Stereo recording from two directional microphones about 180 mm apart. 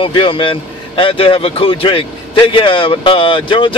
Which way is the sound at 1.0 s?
30° left (ahead or behind).